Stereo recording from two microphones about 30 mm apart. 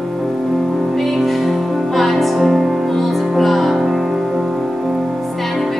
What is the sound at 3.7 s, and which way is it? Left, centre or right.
Music, centre.